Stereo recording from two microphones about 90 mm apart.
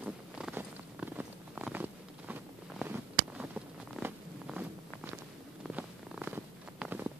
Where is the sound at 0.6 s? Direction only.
20° right (ahead or behind).